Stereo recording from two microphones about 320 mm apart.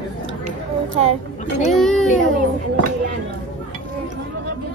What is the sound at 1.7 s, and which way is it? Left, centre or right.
Speech, centre.